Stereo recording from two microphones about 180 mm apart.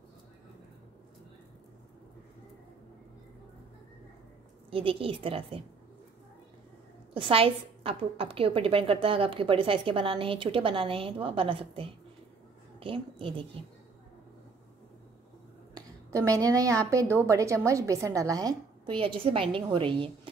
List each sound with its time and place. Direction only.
4.6 s a woman's voice: 30° right (ahead or behind)
7.2 s a woman's voice: 30° right (ahead or behind)
16.3 s a woman's voice: 20° right (ahead or behind)